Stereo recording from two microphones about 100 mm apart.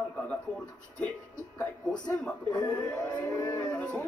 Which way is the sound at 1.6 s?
10° left (ahead or behind).